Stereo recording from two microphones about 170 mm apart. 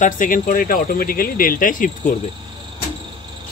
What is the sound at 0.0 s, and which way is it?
Speech, 50° left (ahead or behind).